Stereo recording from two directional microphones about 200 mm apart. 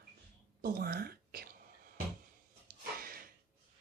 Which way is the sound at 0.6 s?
50° right (ahead or behind).